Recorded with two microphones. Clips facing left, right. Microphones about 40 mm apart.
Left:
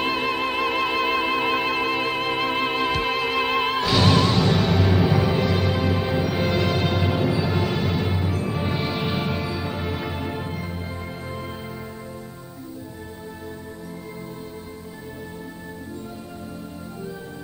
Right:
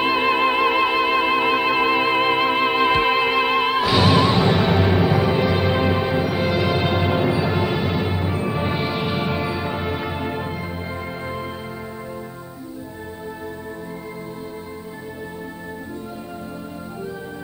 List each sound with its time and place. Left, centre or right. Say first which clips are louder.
0.0 s music: right 6 dB; centre
6.0 s music: right 2 dB; centre